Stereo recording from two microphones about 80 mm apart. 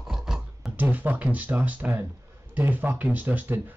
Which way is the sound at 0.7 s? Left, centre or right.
Right.